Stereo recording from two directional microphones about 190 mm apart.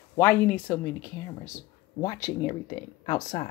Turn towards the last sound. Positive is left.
turn(degrees=25)  # may be behind; listen again after turning